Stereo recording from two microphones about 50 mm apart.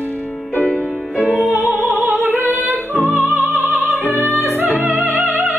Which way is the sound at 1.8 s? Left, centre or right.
Centre.